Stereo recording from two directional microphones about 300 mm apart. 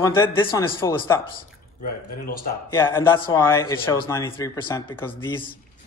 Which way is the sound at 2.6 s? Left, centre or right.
Centre.